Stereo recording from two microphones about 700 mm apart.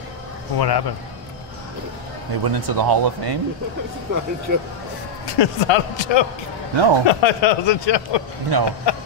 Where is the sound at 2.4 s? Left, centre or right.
Right.